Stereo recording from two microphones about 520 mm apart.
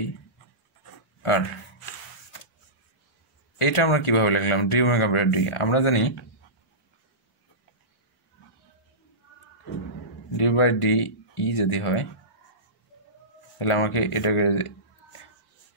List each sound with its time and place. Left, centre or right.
3.5 s speech: left
10.3 s speech: left
13.6 s speech: left